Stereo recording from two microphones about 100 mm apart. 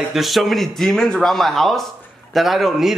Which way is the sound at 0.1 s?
Centre (ahead or behind).